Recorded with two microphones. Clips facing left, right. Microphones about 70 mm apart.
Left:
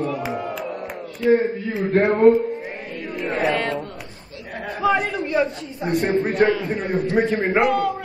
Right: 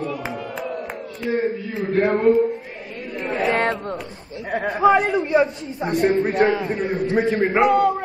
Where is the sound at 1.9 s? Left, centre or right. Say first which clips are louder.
Left 3 dB; left.